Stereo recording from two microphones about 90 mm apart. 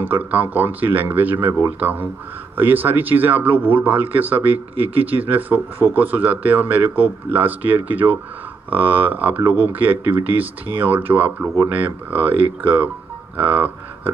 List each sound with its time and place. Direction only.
0.0 s speech: 20° right (ahead or behind)